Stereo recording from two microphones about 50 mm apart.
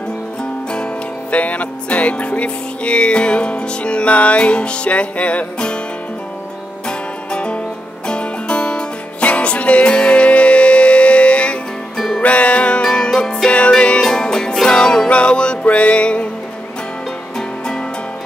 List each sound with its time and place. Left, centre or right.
1.3 s music: left
6.9 s music: centre
17.4 s music: centre